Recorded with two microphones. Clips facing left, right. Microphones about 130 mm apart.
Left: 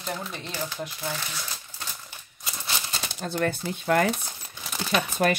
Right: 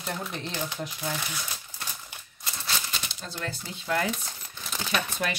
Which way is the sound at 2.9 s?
45° left (ahead or behind).